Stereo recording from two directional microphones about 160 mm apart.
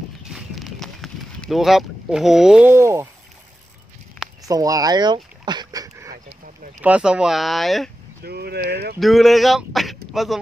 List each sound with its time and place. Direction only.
0.2 s clip-clop: centre (ahead or behind)
2.7 s speech: 15° right (ahead or behind)
4.5 s a sound: 20° right (ahead or behind)
6.8 s speech: 5° right (ahead or behind)
8.2 s speech: 80° right
9.0 s speech: centre (ahead or behind)